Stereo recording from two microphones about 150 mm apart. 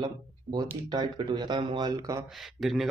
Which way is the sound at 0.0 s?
30° right (ahead or behind).